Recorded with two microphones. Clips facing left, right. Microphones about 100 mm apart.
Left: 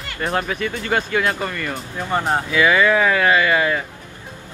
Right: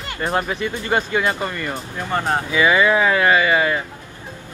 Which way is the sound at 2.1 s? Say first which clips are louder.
Left 1 dB; 5° left (ahead or behind).